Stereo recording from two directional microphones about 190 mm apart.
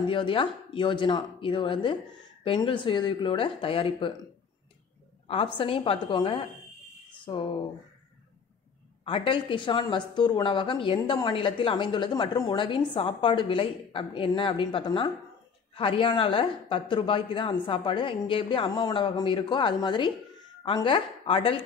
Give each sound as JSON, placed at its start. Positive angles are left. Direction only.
{"t": 0.1, "sound": "speech", "side_deg": 25}
{"t": 5.3, "sound": "speech", "side_deg": 30}
{"t": 9.0, "sound": "speech", "side_deg": 25}